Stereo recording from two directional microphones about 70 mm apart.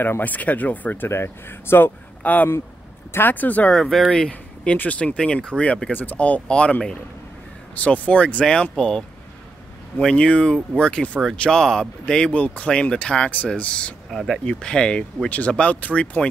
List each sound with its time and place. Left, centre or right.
0.2 s speech: left
2.2 s speech: left
3.7 s speech: centre
14.1 s speech: centre
14.4 s speech: centre